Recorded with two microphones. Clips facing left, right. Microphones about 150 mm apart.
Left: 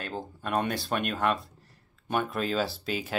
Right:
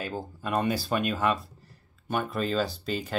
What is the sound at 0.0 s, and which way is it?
Speech, 5° right (ahead or behind).